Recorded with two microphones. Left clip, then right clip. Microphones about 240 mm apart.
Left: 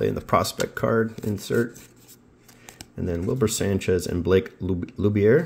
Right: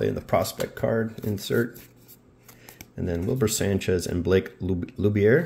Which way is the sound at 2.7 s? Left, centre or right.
Centre.